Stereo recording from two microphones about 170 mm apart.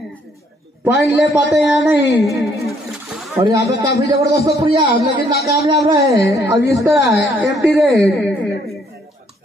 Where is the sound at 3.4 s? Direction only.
20° right (ahead or behind); by 8.3 s centre (ahead or behind).